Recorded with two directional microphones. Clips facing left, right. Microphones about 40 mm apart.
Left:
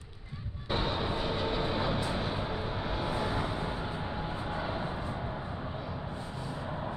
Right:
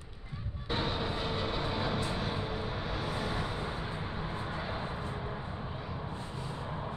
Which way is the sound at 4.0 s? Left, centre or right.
Left.